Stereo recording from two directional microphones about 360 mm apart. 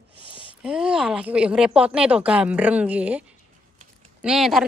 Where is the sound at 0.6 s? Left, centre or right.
Centre.